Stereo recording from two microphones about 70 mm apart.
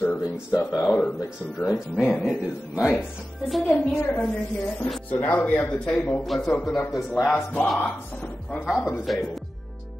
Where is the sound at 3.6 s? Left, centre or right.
Centre.